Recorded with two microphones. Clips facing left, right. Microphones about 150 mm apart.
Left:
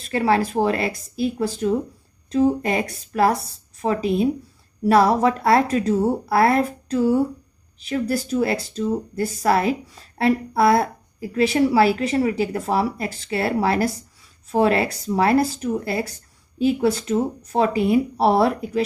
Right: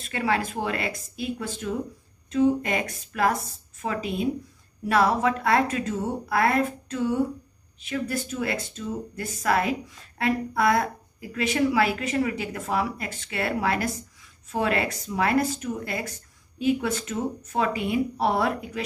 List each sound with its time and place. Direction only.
0.0 s speech: 35° left (ahead or behind)